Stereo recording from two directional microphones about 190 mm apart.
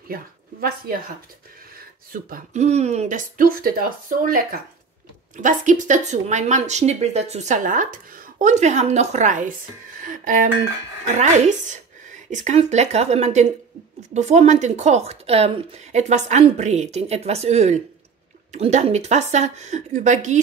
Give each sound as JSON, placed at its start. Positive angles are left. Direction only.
{"t": 0.1, "sound": "speech", "side_deg": -50}
{"t": 2.2, "sound": "a woman's voice", "side_deg": -45}